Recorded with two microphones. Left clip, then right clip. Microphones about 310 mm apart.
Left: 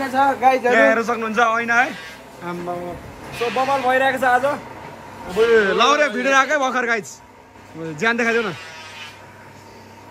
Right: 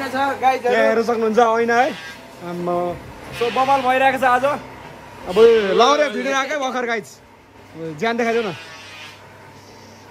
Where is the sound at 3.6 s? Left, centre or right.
Centre.